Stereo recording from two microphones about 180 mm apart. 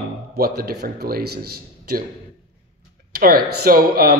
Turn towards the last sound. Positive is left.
turn(degrees=-55)  # may be behind; listen again after turning